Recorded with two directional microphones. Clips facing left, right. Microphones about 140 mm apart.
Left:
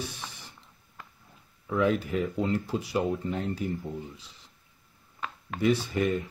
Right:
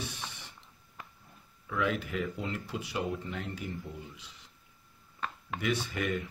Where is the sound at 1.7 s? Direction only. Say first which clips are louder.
Left 6 dB; 35° left (ahead or behind).